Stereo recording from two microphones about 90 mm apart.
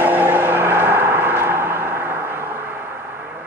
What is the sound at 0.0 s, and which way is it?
Vehicle, 20° right (ahead or behind).